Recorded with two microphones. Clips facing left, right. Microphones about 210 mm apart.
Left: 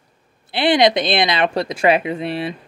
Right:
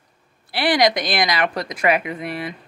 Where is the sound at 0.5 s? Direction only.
25° left (ahead or behind).